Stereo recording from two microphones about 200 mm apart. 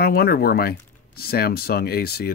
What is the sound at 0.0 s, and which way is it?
Speech, 50° left (ahead or behind).